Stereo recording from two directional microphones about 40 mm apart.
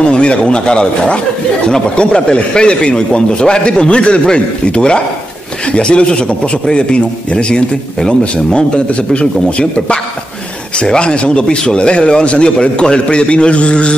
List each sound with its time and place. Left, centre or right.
0.0 s a man's voice: left